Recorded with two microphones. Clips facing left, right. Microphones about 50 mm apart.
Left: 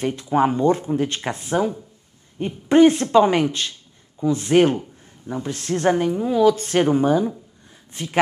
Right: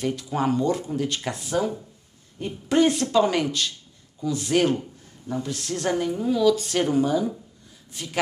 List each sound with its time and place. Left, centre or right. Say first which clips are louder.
0.0 s speech: left 6 dB; left